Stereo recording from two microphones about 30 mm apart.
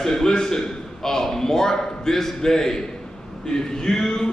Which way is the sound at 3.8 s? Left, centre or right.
Centre.